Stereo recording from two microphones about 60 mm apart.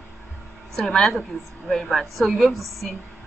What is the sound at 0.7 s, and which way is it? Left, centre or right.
A woman's voice, centre.